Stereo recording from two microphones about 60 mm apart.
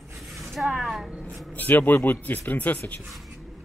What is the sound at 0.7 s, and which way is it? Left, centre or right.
Speech, centre.